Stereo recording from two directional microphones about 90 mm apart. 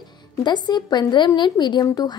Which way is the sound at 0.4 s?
50° left (ahead or behind).